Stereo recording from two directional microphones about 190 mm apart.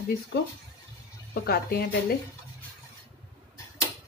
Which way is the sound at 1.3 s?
55° left (ahead or behind).